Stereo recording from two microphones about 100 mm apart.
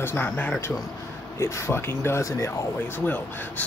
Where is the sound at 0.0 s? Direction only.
20° left (ahead or behind).